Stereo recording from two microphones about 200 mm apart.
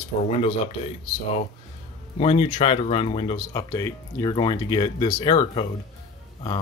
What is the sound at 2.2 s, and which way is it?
Speech, 30° left (ahead or behind).